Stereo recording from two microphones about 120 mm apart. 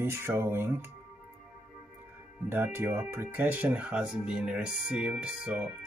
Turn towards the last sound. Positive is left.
turn(degrees=-10)  # may be behind; listen again after turning